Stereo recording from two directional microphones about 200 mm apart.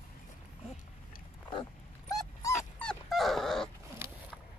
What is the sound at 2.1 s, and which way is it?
Dog, 15° left (ahead or behind).